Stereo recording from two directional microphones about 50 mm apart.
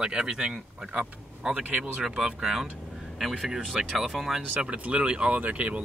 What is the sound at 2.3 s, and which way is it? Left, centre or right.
A man's voice, centre.